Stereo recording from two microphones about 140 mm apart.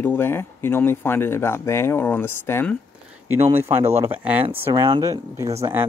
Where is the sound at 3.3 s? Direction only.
15° right (ahead or behind).